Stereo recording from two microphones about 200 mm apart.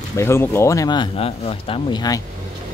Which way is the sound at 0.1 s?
15° left (ahead or behind).